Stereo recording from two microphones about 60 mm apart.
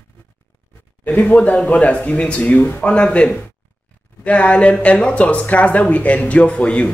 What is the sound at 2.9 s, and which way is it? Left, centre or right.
Speech, centre.